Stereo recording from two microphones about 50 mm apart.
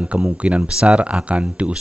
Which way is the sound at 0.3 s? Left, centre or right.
Right.